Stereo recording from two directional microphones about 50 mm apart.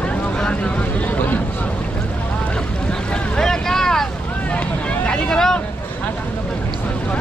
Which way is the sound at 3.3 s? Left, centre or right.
Centre.